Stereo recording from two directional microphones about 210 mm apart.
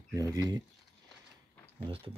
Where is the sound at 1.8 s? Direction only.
25° right (ahead or behind).